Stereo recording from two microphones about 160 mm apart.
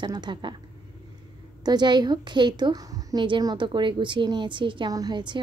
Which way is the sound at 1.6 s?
25° right (ahead or behind).